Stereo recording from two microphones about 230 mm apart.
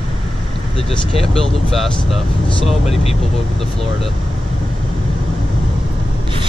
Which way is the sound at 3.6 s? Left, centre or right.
Centre.